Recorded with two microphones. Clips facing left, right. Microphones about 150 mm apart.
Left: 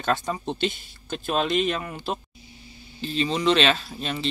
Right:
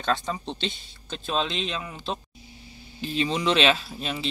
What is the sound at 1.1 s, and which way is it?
Speech, 10° left (ahead or behind).